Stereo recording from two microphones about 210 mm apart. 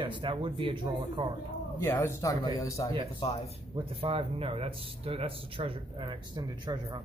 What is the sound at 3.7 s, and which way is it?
Speech, 25° right (ahead or behind).